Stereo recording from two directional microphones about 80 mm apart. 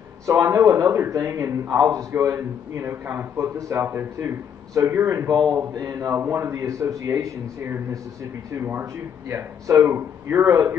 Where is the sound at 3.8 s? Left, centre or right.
Right.